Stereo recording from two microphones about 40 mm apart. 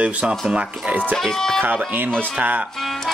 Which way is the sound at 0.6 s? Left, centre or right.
Right.